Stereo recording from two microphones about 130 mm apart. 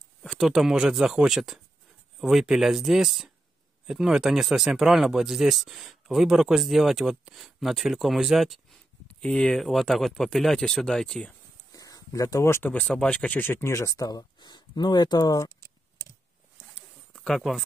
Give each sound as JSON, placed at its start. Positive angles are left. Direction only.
{"t": 0.2, "sound": "speech", "side_deg": 0}
{"t": 11.7, "sound": "speech", "side_deg": 30}
{"t": 17.1, "sound": "a sound", "side_deg": 0}